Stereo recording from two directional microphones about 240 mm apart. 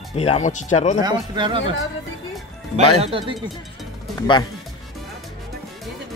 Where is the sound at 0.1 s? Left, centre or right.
Left.